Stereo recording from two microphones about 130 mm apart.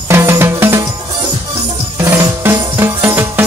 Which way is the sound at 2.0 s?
20° right (ahead or behind).